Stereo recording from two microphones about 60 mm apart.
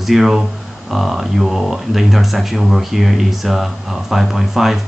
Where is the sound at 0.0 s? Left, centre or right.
Centre.